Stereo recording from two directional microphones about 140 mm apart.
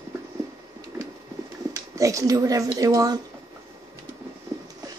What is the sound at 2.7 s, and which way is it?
Speech, 25° right (ahead or behind).